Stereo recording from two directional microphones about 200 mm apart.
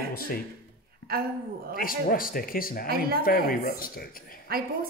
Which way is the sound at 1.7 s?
45° left (ahead or behind).